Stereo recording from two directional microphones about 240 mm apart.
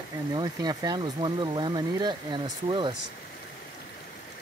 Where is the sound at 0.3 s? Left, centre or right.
Centre.